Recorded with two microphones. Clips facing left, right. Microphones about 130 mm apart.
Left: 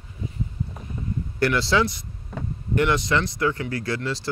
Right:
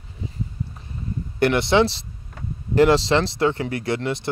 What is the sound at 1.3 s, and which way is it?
Speech, 20° right (ahead or behind).